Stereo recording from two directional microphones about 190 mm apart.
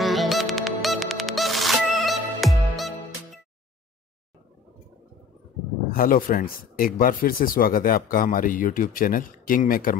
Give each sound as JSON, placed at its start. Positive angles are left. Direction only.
{"t": 0.0, "sound": "music", "side_deg": 0}
{"t": 5.9, "sound": "speech", "side_deg": 50}